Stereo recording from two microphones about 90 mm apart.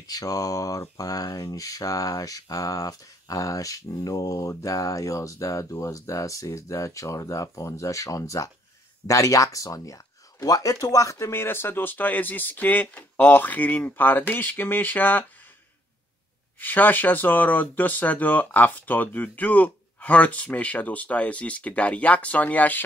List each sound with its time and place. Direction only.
0.0 s speech: 45° left (ahead or behind); by 15.2 s 20° left (ahead or behind)
16.5 s speech: 20° left (ahead or behind)